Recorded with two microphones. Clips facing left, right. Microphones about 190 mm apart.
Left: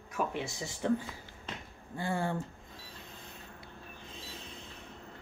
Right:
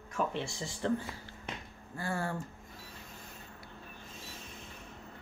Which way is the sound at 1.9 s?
20° left (ahead or behind).